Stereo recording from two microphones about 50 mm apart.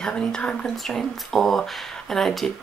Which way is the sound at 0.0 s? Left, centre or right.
Centre.